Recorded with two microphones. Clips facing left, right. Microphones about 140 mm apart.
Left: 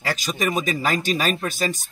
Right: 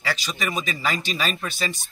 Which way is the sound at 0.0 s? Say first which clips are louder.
Left 4 dB; 45° left (ahead or behind).